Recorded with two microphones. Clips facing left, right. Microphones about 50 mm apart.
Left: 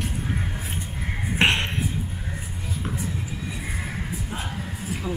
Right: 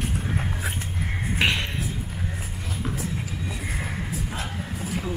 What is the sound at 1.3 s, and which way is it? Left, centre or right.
Music, centre.